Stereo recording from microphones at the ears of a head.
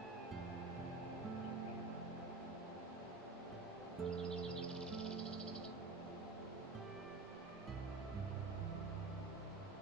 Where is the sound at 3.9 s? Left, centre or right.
Right.